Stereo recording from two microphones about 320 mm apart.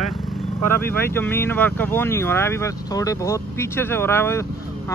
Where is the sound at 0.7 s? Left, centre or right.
Centre.